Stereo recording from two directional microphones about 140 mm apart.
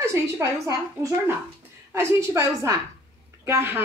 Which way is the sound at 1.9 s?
20° right (ahead or behind).